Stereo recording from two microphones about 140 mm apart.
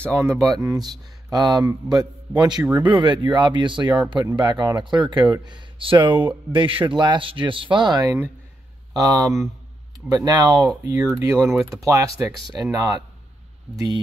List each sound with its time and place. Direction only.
0.1 s a man's voice: 20° right (ahead or behind)